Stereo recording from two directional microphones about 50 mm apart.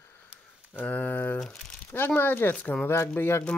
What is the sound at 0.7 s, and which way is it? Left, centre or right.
Speech, left.